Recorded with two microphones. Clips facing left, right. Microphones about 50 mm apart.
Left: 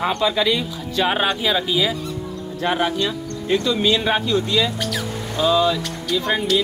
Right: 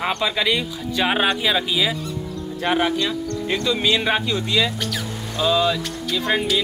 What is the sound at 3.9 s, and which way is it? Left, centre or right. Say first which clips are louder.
Speech: left 2 dB; centre.